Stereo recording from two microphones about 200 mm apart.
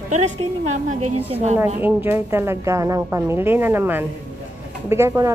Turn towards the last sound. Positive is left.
turn(degrees=-15)  # may be behind; listen again after turning